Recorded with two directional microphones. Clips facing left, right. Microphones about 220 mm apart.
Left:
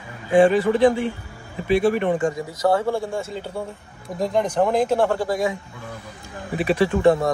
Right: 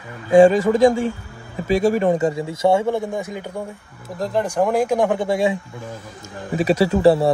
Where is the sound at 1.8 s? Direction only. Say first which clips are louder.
Right 4 dB; 40° right (ahead or behind); by 3.6 s 15° right (ahead or behind).